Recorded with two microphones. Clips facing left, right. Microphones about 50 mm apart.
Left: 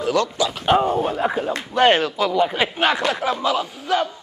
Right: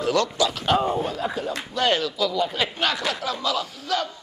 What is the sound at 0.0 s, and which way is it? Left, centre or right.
Speech, left.